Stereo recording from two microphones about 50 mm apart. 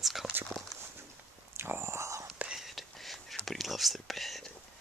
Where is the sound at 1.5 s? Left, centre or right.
Right.